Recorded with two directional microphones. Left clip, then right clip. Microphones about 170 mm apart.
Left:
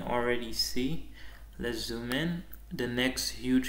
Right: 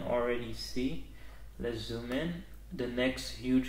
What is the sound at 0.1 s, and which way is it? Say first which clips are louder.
Speech: left 2 dB; 15° left (ahead or behind).